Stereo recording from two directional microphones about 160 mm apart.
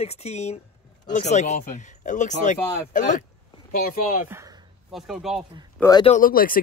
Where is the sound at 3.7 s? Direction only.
65° left (ahead or behind).